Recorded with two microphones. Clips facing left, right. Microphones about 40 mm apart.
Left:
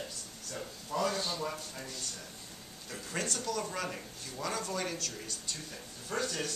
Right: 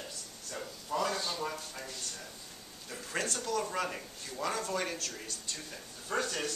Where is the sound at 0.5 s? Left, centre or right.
Centre.